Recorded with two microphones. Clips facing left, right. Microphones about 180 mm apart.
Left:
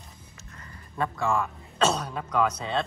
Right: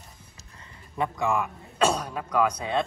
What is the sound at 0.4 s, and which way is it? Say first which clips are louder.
Speech: left 4 dB; 25° right (ahead or behind).